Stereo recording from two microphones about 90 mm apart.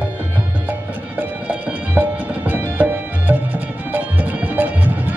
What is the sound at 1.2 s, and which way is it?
Music, 15° right (ahead or behind).